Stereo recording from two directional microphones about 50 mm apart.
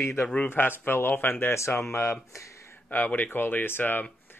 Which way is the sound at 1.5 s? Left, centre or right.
Left.